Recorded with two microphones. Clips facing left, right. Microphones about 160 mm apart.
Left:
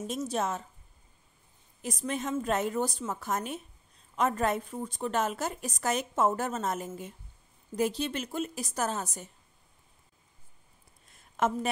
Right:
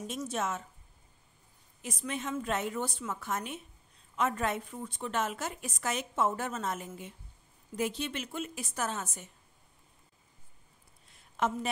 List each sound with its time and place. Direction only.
0.0 s a woman's voice: 35° left (ahead or behind)
1.8 s a woman's voice: 40° left (ahead or behind)
11.3 s speech: 50° left (ahead or behind)